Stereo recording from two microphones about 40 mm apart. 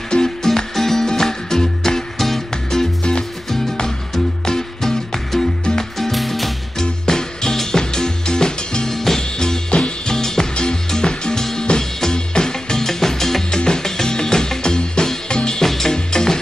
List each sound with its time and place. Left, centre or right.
0.1 s music: centre
6.8 s music: centre
13.5 s music: centre
15.6 s music: centre